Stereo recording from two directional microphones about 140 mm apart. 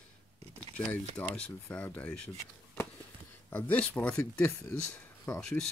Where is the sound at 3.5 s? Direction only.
10° left (ahead or behind).